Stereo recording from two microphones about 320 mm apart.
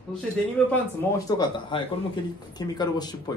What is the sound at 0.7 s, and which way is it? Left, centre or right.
Speech, centre.